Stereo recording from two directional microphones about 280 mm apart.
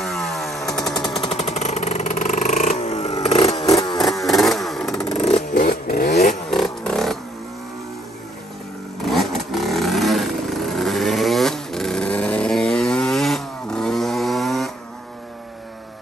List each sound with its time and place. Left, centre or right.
0.0 s chainsaw: centre
1.3 s vehicle: left
4.0 s chainsaw: centre
5.5 s chainsaw: left
6.5 s a sound: centre
9.0 s vehicle: centre